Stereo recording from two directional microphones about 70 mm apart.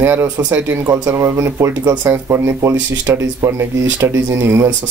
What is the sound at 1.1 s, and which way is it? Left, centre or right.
Speech, right.